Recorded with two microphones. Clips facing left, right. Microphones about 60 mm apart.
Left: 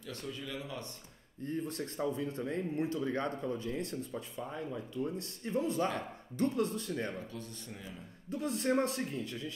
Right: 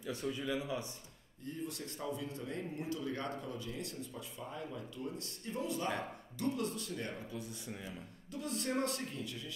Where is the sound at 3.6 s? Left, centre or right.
Left.